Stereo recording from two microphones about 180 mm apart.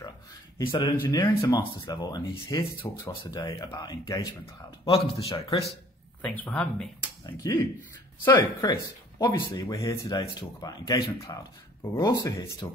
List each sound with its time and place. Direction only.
0.6 s speech: 25° left (ahead or behind)
4.8 s speech: 30° left (ahead or behind)
6.2 s speech: 10° left (ahead or behind)
8.4 s speech: 20° left (ahead or behind)